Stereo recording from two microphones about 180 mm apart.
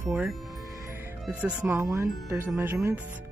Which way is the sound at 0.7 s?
15° right (ahead or behind).